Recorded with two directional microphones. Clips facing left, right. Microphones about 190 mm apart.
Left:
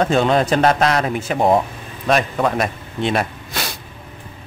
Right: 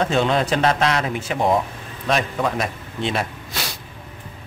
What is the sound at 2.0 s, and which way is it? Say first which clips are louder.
A man's voice: left 4 dB; 55° left (ahead or behind).